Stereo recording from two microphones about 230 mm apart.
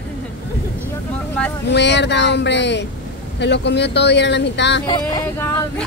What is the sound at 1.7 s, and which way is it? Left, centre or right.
Speech, left.